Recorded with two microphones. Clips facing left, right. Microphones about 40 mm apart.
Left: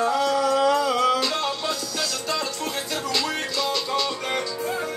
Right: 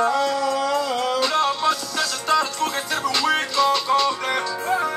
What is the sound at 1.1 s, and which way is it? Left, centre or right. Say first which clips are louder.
Music: right 5 dB; right.